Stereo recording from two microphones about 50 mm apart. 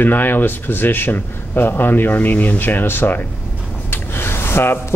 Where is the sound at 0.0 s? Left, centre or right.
Left.